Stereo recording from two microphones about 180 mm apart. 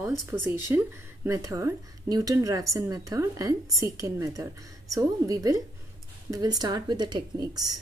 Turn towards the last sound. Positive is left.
turn(degrees=-20)  # may be behind; listen again after turning